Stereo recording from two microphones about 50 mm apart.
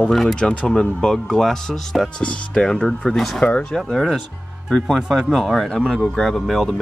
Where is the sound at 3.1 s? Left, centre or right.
Centre.